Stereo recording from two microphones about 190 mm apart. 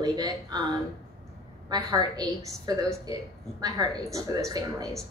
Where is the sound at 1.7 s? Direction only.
20° right (ahead or behind).